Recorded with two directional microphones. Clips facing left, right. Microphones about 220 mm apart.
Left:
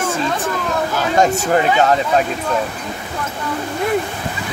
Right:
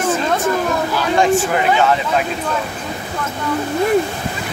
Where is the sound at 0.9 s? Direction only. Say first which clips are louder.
Right 1 dB; 40° left (ahead or behind).